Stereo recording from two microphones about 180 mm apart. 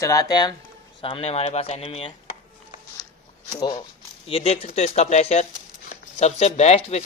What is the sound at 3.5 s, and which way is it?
Speech, 25° left (ahead or behind).